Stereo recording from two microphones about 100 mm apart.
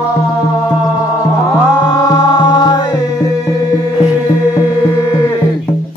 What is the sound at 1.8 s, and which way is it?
Music, 45° left (ahead or behind).